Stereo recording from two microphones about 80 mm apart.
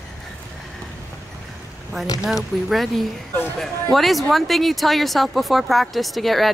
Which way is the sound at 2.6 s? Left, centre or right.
Centre.